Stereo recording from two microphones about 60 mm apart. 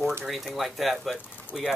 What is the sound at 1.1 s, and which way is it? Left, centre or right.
Speech, centre.